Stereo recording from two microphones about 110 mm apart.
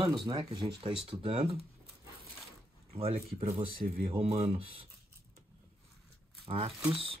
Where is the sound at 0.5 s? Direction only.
50° right (ahead or behind).